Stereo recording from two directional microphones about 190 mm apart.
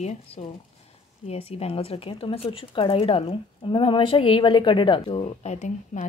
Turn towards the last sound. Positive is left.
turn(degrees=35)  # may be behind; listen again after turning